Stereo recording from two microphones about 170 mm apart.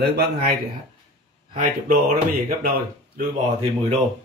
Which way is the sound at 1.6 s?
55° right (ahead or behind).